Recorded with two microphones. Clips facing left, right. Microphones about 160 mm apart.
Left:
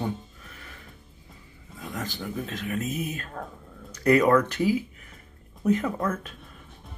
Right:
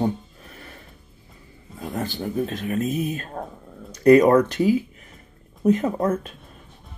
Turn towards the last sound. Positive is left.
turn(degrees=-30)  # may be behind; listen again after turning